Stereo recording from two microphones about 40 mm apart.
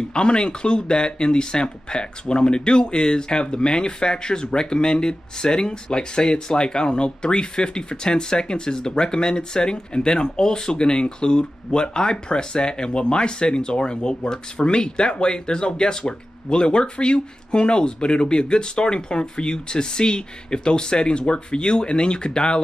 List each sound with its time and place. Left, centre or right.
0.1 s speech: left